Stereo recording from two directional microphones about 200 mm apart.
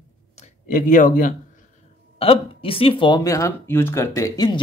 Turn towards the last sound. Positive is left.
turn(degrees=20)  # may be behind; listen again after turning